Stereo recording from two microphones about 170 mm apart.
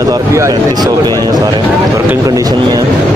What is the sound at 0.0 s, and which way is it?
Speech, 20° right (ahead or behind).